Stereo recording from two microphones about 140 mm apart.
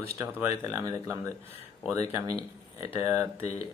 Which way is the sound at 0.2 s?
20° right (ahead or behind).